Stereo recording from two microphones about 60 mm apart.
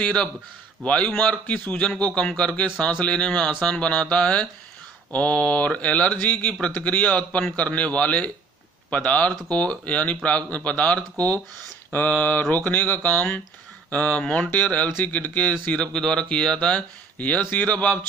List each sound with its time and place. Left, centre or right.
0.0 s speech: centre